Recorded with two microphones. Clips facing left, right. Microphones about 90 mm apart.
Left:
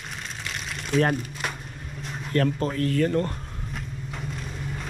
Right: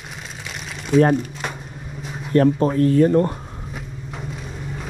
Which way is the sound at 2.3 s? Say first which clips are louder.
Right 8 dB; 30° right (ahead or behind).